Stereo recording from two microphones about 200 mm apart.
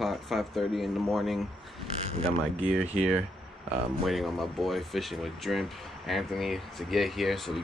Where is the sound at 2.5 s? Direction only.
10° right (ahead or behind).